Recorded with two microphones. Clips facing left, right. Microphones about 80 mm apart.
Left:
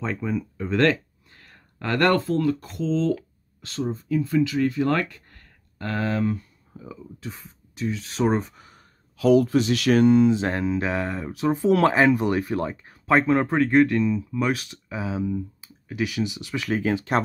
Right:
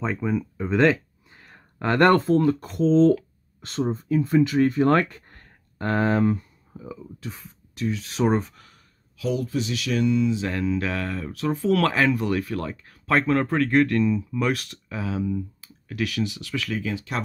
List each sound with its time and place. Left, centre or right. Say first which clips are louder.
0.0 s speech: right 2 dB; centre; by 6.4 s right
6.8 s speech: right 1 dB; centre
9.1 s speech: left 8 dB; left
10.6 s speech: left 1 dB; left
16.7 s speech: left 9 dB; left